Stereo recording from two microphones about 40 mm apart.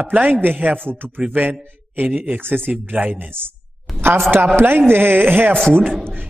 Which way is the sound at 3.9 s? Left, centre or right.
Right.